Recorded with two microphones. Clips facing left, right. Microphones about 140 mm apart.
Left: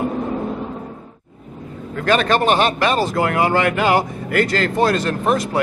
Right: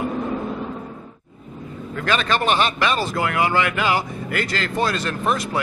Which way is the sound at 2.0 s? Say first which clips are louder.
Left 5 dB; 50° left (ahead or behind).